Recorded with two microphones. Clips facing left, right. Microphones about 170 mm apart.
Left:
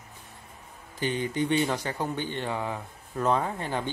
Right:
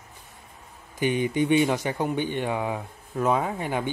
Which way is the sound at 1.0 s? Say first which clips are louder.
Right 4 dB; 15° right (ahead or behind).